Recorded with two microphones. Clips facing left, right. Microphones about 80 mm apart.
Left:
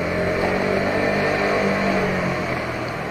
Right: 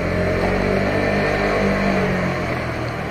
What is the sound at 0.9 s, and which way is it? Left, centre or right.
Vehicle, centre.